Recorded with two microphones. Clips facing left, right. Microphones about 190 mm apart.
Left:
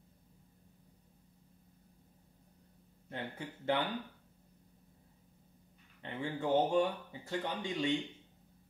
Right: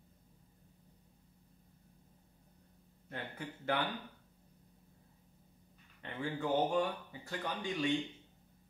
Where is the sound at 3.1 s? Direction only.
20° left (ahead or behind).